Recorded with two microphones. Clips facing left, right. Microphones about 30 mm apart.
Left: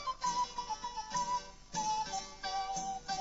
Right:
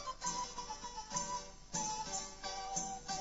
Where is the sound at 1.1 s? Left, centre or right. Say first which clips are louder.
Left 7 dB; left.